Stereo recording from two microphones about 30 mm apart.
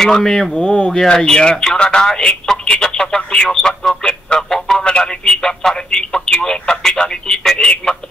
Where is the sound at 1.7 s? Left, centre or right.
Left.